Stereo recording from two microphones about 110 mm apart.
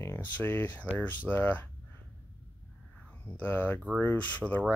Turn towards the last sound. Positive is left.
turn(degrees=15)  # may be behind; listen again after turning